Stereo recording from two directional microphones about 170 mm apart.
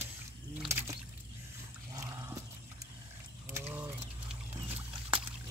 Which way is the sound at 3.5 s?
15° right (ahead or behind).